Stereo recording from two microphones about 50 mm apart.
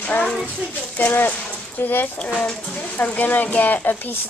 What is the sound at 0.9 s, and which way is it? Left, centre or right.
Speech, left.